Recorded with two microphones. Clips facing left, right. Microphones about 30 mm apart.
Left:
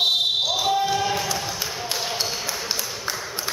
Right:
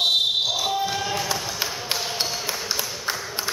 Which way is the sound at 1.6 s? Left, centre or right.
Right.